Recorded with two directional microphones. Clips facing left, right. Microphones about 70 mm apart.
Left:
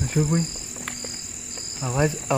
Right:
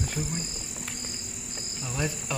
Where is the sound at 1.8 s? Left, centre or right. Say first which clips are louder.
Left 9 dB; left.